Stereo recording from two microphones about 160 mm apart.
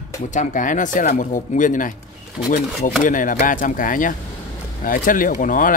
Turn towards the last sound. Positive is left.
turn(degrees=55)  # may be behind; listen again after turning